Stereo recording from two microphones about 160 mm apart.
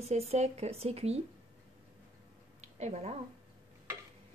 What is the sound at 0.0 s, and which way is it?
Speech, 45° right (ahead or behind).